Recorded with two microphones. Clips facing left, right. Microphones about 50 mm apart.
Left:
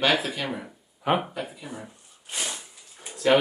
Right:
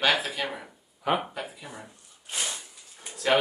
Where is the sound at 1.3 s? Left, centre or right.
Centre.